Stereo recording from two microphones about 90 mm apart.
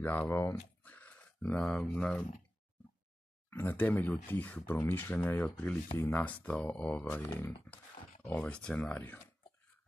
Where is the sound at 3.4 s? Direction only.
25° left (ahead or behind).